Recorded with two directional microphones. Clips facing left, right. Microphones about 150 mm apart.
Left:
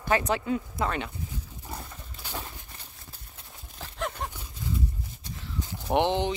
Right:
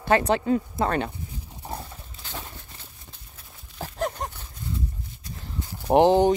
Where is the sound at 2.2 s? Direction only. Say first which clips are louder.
Left 1 dB; 10° left (ahead or behind).